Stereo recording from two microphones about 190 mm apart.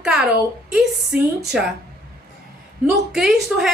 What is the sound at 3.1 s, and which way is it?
Speech, centre (ahead or behind).